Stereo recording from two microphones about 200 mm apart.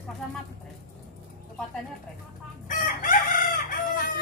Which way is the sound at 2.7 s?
40° left (ahead or behind).